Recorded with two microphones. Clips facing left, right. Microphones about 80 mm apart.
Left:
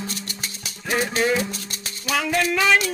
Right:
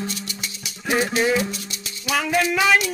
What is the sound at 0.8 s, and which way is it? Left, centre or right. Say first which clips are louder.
Maraca: right 2 dB; centre.